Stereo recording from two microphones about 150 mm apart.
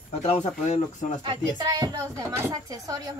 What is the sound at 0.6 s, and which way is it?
Speech, 50° left (ahead or behind).